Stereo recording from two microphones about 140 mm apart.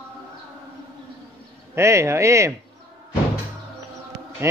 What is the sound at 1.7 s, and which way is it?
Speech, 20° right (ahead or behind).